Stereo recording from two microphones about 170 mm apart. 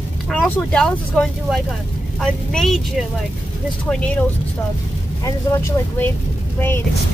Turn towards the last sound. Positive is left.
turn(degrees=10)  # may be behind; listen again after turning